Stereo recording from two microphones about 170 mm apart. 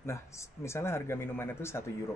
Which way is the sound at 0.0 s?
15° left (ahead or behind).